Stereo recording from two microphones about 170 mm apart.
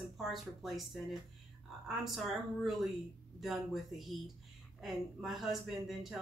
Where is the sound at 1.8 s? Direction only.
Centre (ahead or behind).